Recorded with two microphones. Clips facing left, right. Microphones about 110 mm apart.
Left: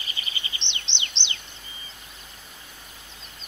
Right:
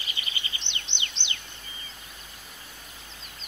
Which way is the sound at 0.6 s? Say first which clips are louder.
Left 1 dB; 25° left (ahead or behind).